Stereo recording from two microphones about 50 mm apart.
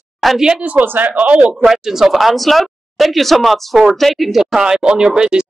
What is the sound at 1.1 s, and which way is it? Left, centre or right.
Speech, right.